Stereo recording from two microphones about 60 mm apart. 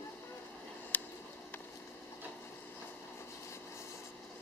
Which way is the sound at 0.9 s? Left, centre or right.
Left.